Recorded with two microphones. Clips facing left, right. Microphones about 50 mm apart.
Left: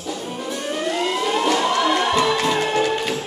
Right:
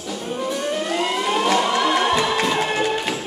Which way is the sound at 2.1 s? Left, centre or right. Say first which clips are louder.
Left 1 dB; centre.